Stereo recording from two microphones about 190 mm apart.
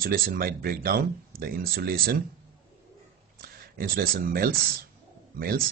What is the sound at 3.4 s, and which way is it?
Speech, 50° right (ahead or behind).